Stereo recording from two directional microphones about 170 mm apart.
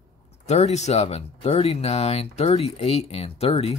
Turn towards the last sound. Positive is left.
turn(degrees=35)  # may be behind; listen again after turning